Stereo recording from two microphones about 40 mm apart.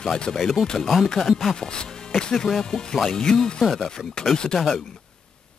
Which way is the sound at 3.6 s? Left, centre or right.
Centre.